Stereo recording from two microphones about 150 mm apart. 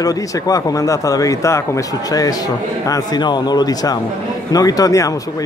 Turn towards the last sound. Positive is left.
turn(degrees=20)  # may be behind; listen again after turning